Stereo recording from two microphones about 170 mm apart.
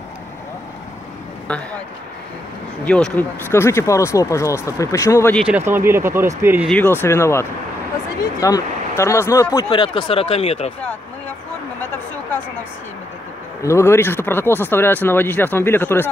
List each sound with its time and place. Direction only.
1.5 s speech: 5° left (ahead or behind)
2.8 s speech: 10° left (ahead or behind)
5.7 s speech: 15° right (ahead or behind)
6.7 s speech: 10° left (ahead or behind); by 10.7 s 35° left (ahead or behind)
13.6 s speech: 15° left (ahead or behind)